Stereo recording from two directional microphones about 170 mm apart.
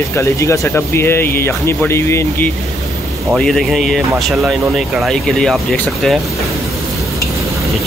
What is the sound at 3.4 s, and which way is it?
Speech, centre (ahead or behind).